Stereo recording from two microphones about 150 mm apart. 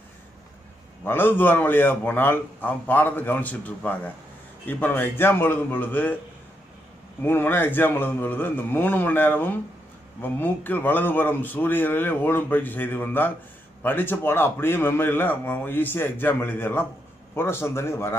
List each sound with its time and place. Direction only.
1.0 s a man's voice: 15° left (ahead or behind)
7.2 s a man's voice: 15° left (ahead or behind)